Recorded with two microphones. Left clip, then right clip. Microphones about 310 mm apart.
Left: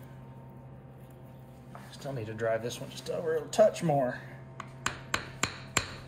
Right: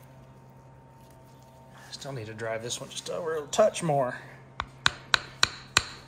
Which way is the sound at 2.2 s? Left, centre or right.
Centre.